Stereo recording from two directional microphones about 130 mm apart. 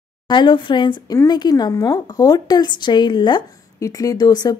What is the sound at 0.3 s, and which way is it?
A woman's voice, 35° left (ahead or behind).